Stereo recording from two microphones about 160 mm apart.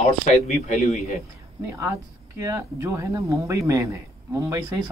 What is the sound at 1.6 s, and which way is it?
Speech, 15° right (ahead or behind).